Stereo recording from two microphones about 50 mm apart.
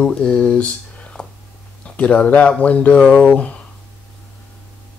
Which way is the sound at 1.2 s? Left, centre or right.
Centre.